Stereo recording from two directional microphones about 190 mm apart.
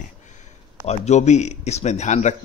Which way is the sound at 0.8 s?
35° left (ahead or behind).